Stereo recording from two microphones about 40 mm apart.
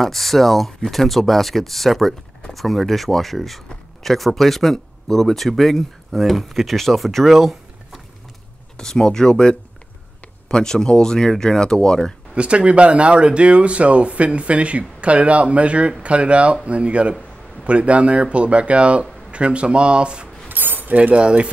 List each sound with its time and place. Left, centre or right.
0.0 s speech: centre
8.7 s speech: centre
12.4 s speech: right
20.4 s keys jangling: right
20.9 s speech: right
21.2 s speech: right